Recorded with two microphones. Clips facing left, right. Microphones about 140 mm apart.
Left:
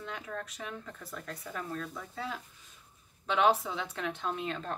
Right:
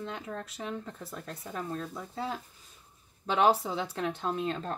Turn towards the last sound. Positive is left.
turn(degrees=-35)  # may be behind; listen again after turning